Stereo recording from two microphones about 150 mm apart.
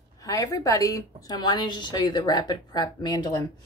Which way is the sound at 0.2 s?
20° left (ahead or behind).